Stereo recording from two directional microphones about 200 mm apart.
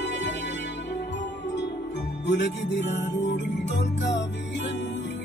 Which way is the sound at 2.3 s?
65° left (ahead or behind).